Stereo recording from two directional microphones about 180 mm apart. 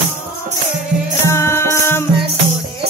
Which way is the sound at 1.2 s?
15° left (ahead or behind).